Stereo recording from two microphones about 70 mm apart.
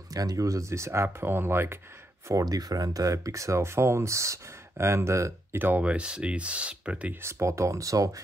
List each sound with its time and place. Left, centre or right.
0.1 s speech: right
2.4 s speech: right
5.6 s speech: right
7.2 s speech: right